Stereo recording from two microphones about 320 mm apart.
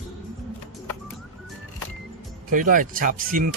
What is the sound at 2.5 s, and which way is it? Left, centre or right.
Speech, right.